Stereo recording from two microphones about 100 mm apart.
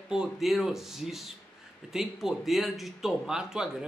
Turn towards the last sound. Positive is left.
turn(degrees=-5)  # may be behind; listen again after turning